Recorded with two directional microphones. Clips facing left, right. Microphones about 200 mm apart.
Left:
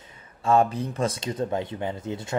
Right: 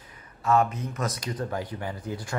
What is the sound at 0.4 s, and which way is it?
Speech, 30° left (ahead or behind).